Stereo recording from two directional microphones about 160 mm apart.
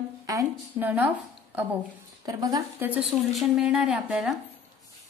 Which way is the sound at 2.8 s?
10° right (ahead or behind).